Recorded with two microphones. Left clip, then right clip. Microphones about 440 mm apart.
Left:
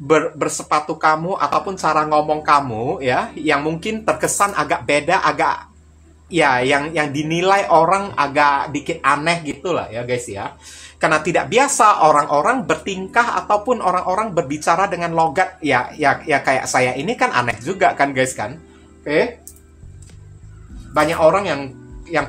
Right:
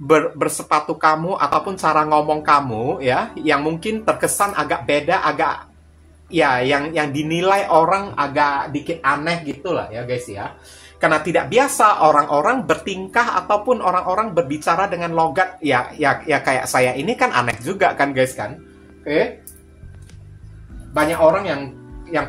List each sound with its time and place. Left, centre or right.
0.0 s speech: right
20.9 s speech: right